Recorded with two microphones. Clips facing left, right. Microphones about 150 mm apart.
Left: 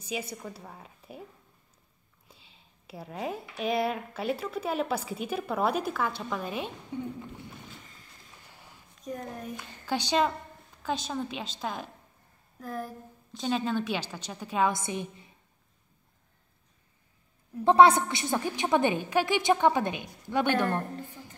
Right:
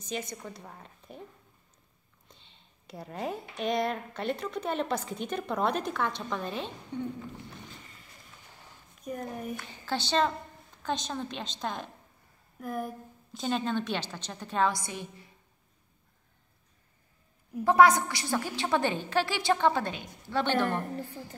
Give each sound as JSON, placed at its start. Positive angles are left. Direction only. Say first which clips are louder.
{"t": 0.0, "sound": "speech", "louder": "left 1 dB", "side_deg": 10}
{"t": 2.2, "sound": "a woman's voice", "louder": "left 1 dB", "side_deg": 5}
{"t": 9.0, "sound": "speech", "louder": "right 1 dB", "side_deg": -5}
{"t": 9.8, "sound": "a woman's voice", "louder": "left 1 dB", "side_deg": 10}
{"t": 12.5, "sound": "speech", "louder": "right 2 dB", "side_deg": -10}
{"t": 14.7, "sound": "a woman's voice", "louder": "left 3 dB", "side_deg": 20}
{"t": 17.6, "sound": "a woman's voice", "louder": "left 2 dB", "side_deg": 25}